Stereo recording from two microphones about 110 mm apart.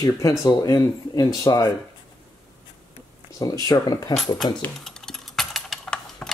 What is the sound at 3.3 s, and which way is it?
Speech, 35° left (ahead or behind).